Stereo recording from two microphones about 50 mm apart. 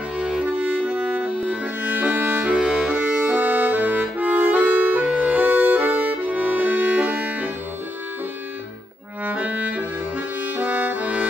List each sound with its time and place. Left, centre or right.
0.2 s accordion: centre
0.6 s music: right
2.5 s music: centre
2.9 s music: right
5.0 s music: centre
5.4 s music: right
9.2 s music: right